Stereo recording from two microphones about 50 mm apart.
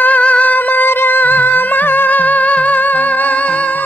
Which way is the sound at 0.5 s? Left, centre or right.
Left.